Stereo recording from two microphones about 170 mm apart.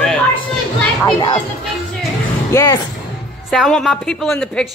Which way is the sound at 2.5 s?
15° left (ahead or behind).